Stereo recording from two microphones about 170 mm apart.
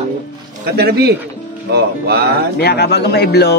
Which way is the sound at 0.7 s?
70° right (ahead or behind).